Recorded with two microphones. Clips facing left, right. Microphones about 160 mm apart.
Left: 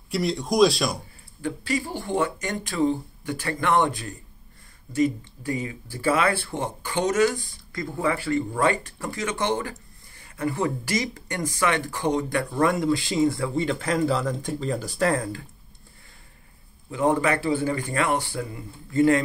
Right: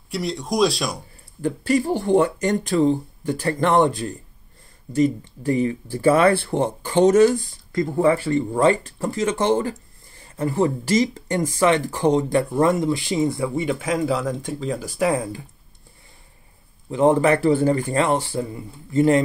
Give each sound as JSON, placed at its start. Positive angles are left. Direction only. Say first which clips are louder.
{"t": 0.1, "sound": "speech", "louder": "even", "side_deg": 5}
{"t": 1.4, "sound": "speech", "louder": "right 7 dB", "side_deg": -50}
{"t": 16.9, "sound": "speech", "louder": "right 6 dB", "side_deg": -30}